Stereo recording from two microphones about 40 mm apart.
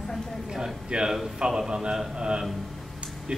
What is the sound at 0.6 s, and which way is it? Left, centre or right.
A man's voice, centre.